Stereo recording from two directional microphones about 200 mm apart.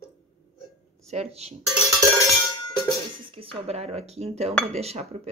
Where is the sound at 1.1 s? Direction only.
30° right (ahead or behind).